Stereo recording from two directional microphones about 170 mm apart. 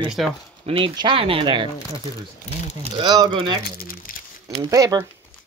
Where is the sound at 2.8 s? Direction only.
25° right (ahead or behind).